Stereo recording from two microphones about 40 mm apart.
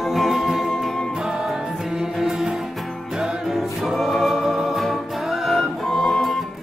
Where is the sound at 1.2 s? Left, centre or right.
Centre.